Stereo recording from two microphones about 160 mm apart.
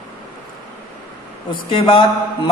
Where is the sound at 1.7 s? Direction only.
30° left (ahead or behind).